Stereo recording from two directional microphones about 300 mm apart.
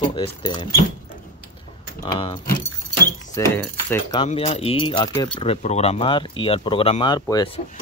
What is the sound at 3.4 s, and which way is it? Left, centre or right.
Speech, centre.